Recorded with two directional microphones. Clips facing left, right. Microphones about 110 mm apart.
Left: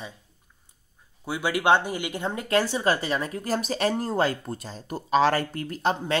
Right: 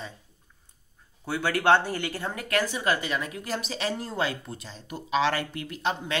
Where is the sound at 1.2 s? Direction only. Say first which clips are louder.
Left 1 dB; 15° left (ahead or behind).